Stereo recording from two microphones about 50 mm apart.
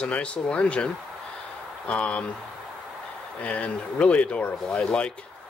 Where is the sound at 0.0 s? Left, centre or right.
Left.